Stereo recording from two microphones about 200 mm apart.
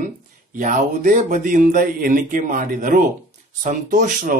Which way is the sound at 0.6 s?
40° right (ahead or behind).